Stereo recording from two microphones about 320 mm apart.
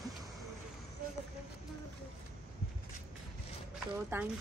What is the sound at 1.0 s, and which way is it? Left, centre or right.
Run, right.